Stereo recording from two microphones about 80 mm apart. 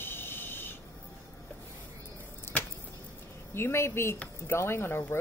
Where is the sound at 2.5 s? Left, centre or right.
Left.